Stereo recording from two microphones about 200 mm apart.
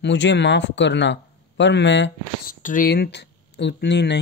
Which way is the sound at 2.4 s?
45° left (ahead or behind).